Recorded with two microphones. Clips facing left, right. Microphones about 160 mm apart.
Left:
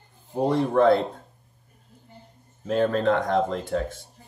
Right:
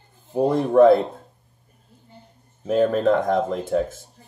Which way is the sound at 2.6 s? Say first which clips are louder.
Right 3 dB; 10° right (ahead or behind).